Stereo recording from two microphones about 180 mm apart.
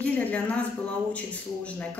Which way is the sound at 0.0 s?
5° left (ahead or behind).